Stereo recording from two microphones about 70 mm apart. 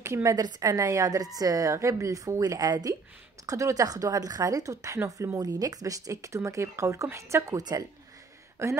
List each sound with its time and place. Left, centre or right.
0.0 s a woman's voice: right
0.4 s a woman's voice: right
3.4 s a woman's voice: right
5.4 s speech: right
7.5 s a woman's voice: right
8.6 s speech: right